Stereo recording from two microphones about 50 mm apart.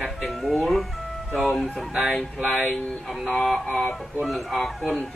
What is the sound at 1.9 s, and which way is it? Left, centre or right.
Music, centre.